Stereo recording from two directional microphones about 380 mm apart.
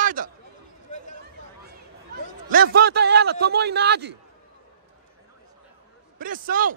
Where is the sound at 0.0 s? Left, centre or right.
Right.